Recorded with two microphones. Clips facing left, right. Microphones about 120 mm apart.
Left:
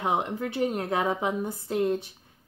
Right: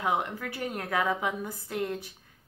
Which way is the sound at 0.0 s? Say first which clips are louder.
Left 2 dB; 25° left (ahead or behind).